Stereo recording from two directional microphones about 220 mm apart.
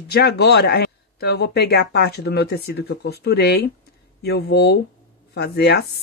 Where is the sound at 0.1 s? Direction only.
45° left (ahead or behind).